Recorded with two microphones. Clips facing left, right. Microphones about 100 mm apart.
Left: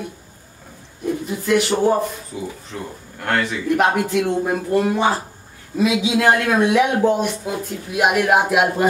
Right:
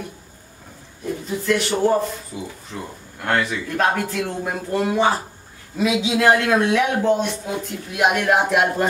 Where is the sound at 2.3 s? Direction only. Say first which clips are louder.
Left 2 dB; 5° right (ahead or behind).